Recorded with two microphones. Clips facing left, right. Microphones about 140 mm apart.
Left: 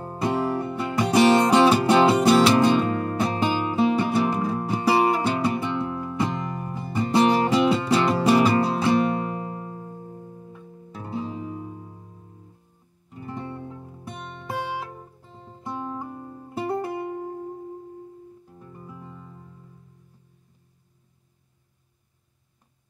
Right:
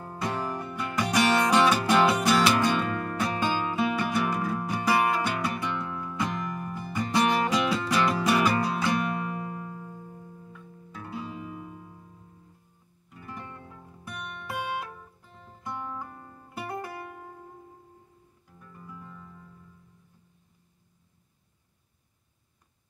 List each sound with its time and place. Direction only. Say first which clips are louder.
0.0 s music: left 7 dB; 25° left (ahead or behind)
13.1 s music: left 8 dB; 25° left (ahead or behind)